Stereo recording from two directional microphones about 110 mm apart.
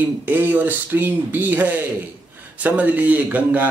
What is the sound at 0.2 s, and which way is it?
Speech, 15° right (ahead or behind).